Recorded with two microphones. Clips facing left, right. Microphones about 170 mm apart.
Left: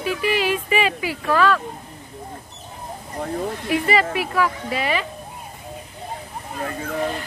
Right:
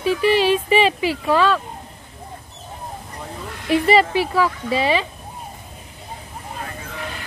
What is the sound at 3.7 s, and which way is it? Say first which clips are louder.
Speech: right 5 dB; 25° right (ahead or behind).